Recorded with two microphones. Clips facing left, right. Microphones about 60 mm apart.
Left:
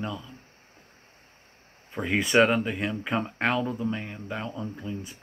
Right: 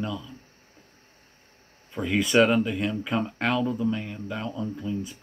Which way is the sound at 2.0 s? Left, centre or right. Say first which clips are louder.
Right 1 dB; left.